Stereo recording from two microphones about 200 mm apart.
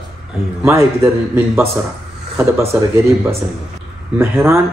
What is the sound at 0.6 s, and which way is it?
Speech, 15° right (ahead or behind).